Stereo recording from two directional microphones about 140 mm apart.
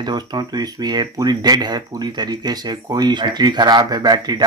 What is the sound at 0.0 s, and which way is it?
Speech, 30° right (ahead or behind).